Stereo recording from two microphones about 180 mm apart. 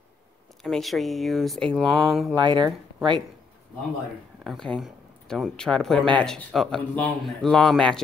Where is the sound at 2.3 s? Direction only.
25° right (ahead or behind).